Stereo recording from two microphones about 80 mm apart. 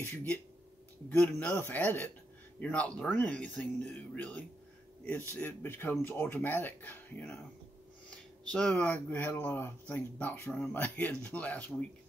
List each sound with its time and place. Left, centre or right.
0.1 s speech: left
8.5 s speech: centre